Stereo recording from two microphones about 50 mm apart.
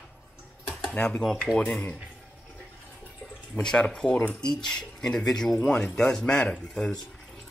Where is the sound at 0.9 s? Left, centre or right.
Left.